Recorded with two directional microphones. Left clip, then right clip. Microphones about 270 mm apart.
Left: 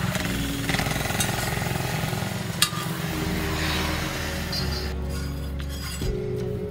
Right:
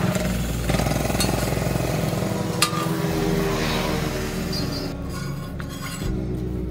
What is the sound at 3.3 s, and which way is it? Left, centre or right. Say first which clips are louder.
Vehicle: right 3 dB; centre.